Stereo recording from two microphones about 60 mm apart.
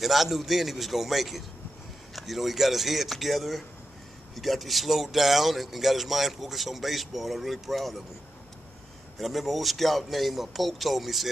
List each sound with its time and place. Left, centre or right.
0.0 s speech: centre
9.2 s speech: centre